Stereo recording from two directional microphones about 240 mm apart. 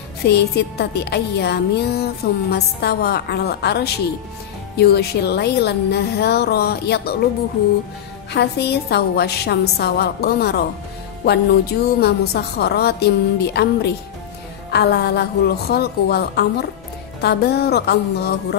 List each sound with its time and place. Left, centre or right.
0.3 s speech: left
8.3 s speech: left
14.7 s speech: left